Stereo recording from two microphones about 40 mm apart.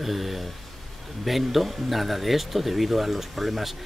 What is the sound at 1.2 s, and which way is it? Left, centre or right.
Speech, centre.